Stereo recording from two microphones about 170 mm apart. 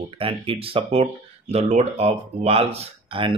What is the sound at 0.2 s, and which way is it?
Speech, 30° right (ahead or behind).